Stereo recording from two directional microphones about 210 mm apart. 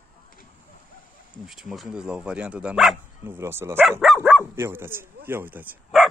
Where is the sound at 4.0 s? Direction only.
Centre (ahead or behind).